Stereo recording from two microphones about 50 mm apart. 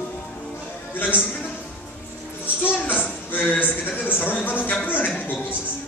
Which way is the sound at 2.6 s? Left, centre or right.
Left.